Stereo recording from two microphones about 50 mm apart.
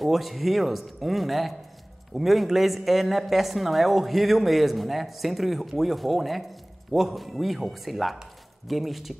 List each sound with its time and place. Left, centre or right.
0.0 s a woman's voice: centre